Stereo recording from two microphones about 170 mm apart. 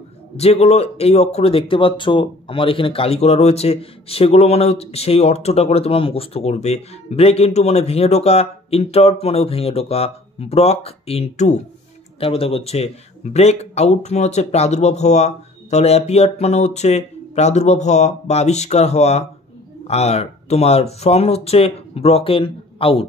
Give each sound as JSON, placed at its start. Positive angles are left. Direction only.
{"t": 0.4, "sound": "speech", "side_deg": 40}